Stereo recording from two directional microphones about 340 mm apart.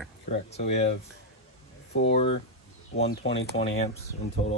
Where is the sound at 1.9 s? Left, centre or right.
Left.